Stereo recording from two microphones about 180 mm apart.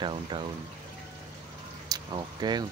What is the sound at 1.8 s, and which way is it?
Speech, 25° right (ahead or behind).